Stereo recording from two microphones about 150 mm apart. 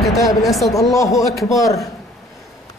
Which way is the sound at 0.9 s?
20° left (ahead or behind).